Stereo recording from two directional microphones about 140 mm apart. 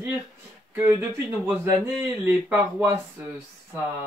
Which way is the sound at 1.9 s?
5° right (ahead or behind).